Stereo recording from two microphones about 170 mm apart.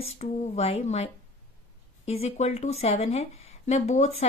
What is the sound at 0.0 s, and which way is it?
Speech, 35° left (ahead or behind).